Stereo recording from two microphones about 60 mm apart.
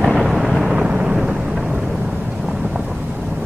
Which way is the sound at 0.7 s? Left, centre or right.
Centre.